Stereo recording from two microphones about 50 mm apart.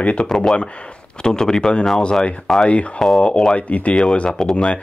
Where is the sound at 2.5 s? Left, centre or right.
Centre.